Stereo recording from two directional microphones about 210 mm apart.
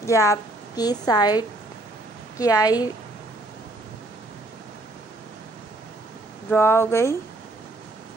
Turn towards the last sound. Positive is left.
turn(degrees=10)  # may be behind; listen again after turning